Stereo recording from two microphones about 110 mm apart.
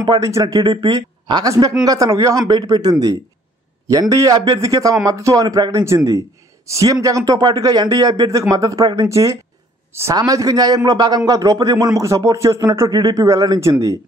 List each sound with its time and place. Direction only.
0.0 s a man's voice: 35° right (ahead or behind)